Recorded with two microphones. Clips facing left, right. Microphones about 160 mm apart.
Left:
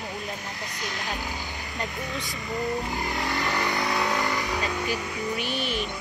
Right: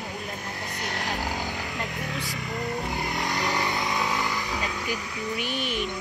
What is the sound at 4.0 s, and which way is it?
Vehicle, centre (ahead or behind).